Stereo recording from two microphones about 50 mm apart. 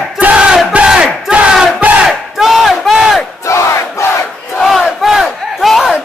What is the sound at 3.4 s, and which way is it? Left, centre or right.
Crowd, left.